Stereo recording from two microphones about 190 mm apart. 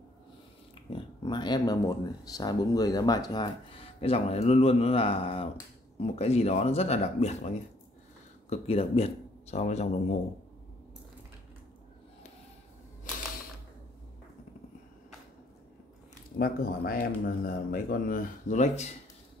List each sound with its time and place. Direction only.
0.8 s speech: 25° left (ahead or behind)
16.3 s speech: 50° left (ahead or behind)